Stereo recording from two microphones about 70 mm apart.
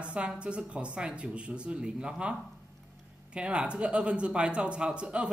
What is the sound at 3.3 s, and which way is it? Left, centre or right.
Speech, centre.